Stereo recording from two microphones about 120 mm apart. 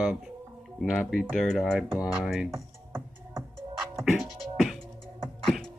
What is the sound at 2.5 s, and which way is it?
Music, 20° right (ahead or behind).